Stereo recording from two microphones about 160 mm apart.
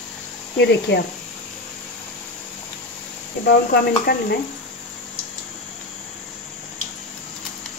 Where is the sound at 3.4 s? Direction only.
75° left (ahead or behind).